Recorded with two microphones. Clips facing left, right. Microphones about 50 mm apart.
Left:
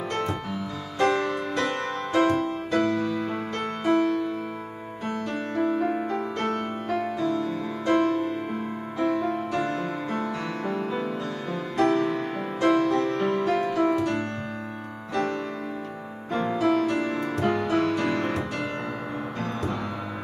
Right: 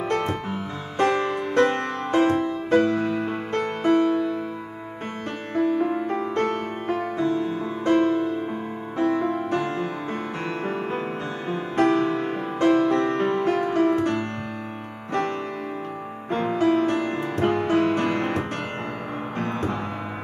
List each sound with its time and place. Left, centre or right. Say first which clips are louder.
0.1 s music: right 3 dB; right
5.5 s music: right 3 dB; right
16.3 s music: right 2 dB; right